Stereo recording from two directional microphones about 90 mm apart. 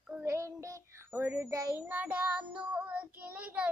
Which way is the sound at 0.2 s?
35° right (ahead or behind).